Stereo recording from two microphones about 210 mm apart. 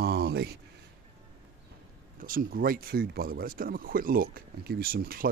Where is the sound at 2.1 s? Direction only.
40° right (ahead or behind).